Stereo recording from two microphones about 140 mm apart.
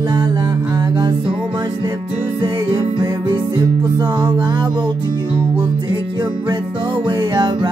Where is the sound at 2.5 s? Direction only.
30° right (ahead or behind).